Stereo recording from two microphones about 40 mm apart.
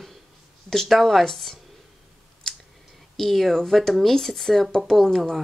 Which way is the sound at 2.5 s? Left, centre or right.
Centre.